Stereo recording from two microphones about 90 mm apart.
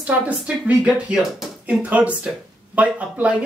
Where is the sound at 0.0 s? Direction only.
15° right (ahead or behind).